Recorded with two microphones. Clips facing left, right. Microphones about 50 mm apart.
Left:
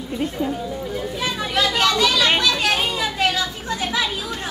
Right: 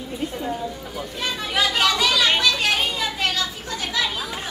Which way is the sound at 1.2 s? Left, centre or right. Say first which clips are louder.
Left 1 dB; centre.